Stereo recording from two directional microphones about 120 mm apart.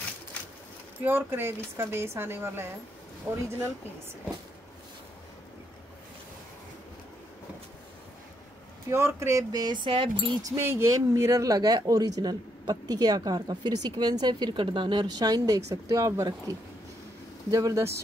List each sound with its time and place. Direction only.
1.0 s a woman's voice: 20° right (ahead or behind)
8.8 s a man's voice: 20° right (ahead or behind); by 10.3 s 45° right (ahead or behind)
10.4 s a woman's voice: 25° right (ahead or behind)